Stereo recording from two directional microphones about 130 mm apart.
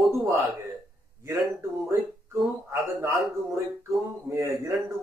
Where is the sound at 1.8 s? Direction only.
20° right (ahead or behind).